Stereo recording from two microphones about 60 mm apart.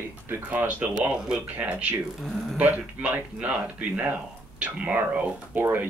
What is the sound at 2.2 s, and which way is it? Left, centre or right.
Speech, centre.